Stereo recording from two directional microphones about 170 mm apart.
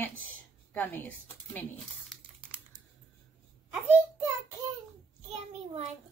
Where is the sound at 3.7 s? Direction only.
10° right (ahead or behind).